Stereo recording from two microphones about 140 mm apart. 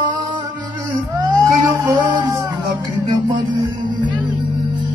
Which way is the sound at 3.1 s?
35° right (ahead or behind).